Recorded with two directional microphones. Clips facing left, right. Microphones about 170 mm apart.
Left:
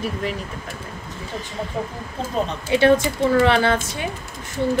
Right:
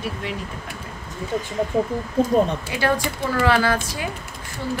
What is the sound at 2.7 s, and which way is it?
A woman's voice, 25° left (ahead or behind).